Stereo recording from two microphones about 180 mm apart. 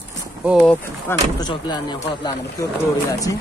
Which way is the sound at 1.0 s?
25° left (ahead or behind).